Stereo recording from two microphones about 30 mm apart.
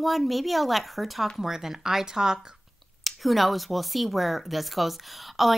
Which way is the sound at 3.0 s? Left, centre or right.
Centre.